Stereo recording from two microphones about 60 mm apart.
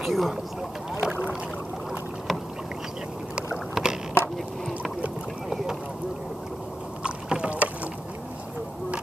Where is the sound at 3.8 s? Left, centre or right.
Centre.